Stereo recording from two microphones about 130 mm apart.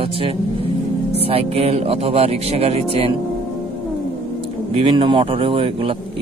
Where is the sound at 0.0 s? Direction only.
45° right (ahead or behind).